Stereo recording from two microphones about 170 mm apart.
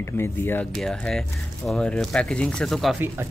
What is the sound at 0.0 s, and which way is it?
Speech, 15° left (ahead or behind).